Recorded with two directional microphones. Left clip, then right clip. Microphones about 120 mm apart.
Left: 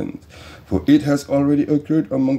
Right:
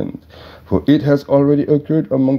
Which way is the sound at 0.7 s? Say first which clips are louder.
Right 2 dB; 30° right (ahead or behind).